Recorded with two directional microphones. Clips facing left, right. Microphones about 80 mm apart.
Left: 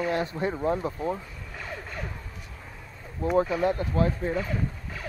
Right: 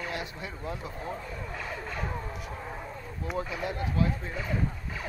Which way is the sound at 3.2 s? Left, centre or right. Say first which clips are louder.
Left 10 dB; left.